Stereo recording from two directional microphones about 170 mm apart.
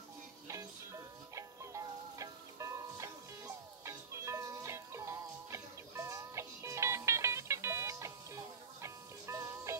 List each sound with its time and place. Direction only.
0.5 s music: 20° right (ahead or behind)